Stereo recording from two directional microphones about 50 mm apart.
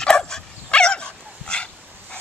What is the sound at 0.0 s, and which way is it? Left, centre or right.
Dog, centre.